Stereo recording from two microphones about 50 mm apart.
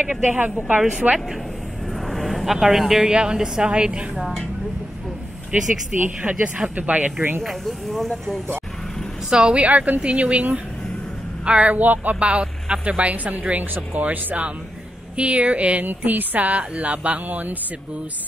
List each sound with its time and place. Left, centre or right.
0.3 s a woman's voice: right
2.0 s vehicle: centre
3.1 s a woman's voice: centre
4.2 s speech: centre
5.5 s a woman's voice: right
7.4 s speech: centre
9.3 s speech: centre
9.6 s a woman's voice: right
11.7 s speech: right
12.2 s a woman's voice: right
15.9 s speech: right